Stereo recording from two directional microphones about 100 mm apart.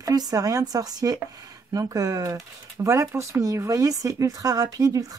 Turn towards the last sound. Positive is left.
turn(degrees=-35)  # may be behind; listen again after turning